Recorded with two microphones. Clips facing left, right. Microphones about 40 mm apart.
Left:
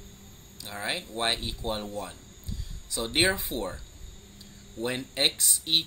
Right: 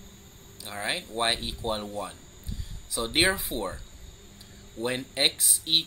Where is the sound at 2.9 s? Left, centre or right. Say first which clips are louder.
Right 1 dB; centre.